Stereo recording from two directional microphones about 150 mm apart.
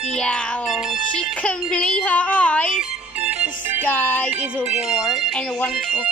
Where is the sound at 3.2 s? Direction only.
10° right (ahead or behind).